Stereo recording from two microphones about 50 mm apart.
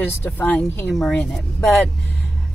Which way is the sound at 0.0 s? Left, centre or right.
Left.